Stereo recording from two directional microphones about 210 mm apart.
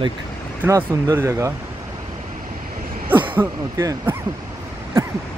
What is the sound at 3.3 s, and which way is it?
Speech, 10° right (ahead or behind).